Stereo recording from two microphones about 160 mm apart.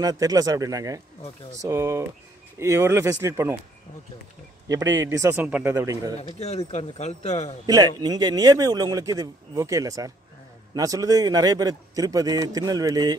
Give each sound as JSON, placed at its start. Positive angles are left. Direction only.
{"t": 0.0, "sound": "a man's voice", "side_deg": -25}
{"t": 4.6, "sound": "a man's voice", "side_deg": -20}
{"t": 6.2, "sound": "speech", "side_deg": 40}
{"t": 7.6, "sound": "speech", "side_deg": -25}